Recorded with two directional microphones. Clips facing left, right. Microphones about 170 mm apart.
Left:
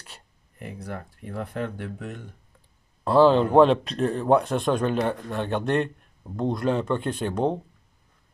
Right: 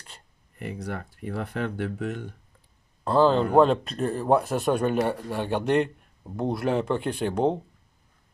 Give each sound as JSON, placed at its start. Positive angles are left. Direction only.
{"t": 0.6, "sound": "speech", "side_deg": -75}
{"t": 3.0, "sound": "speech", "side_deg": 0}